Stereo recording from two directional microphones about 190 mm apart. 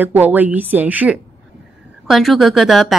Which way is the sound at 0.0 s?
10° right (ahead or behind).